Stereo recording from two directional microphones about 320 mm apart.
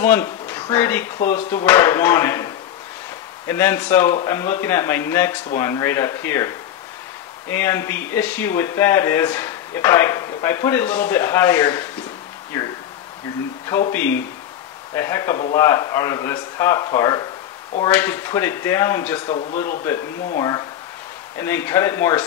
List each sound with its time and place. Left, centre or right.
0.0 s speech: centre
13.7 s speech: centre
19.2 s speech: centre